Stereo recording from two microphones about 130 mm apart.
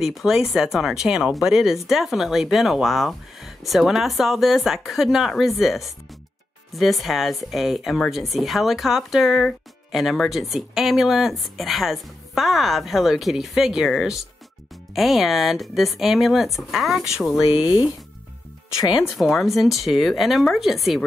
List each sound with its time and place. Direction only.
0.0 s speech: centre (ahead or behind)
17.5 s speech: 40° left (ahead or behind)
18.9 s speech: centre (ahead or behind)